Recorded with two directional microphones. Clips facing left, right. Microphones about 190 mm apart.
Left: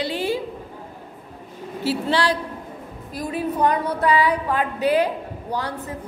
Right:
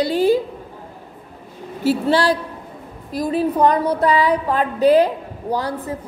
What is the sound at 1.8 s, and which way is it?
A woman's voice, 45° right (ahead or behind).